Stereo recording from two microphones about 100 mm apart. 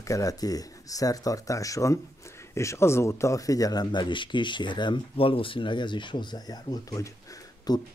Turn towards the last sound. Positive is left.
turn(degrees=40)  # may be behind; listen again after turning